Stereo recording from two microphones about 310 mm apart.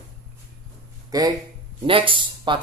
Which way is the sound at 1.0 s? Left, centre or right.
Centre.